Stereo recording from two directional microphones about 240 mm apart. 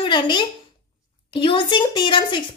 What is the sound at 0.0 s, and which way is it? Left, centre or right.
A woman's voice, centre.